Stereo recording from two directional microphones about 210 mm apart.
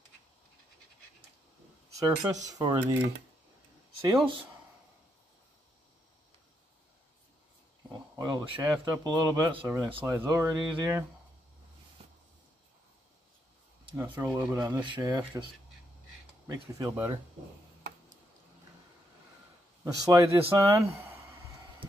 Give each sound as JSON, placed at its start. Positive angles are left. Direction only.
{"t": 2.0, "sound": "speech", "side_deg": -15}
{"t": 7.9, "sound": "a sound", "side_deg": -20}
{"t": 8.5, "sound": "speech", "side_deg": -15}
{"t": 12.0, "sound": "a sound", "side_deg": -25}
{"t": 13.9, "sound": "speech", "side_deg": -10}
{"t": 14.8, "sound": "speech", "side_deg": -20}
{"t": 16.4, "sound": "speech", "side_deg": -15}
{"t": 19.8, "sound": "speech", "side_deg": -15}